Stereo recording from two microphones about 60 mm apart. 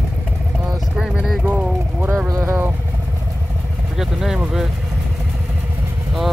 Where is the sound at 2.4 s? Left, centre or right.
Right.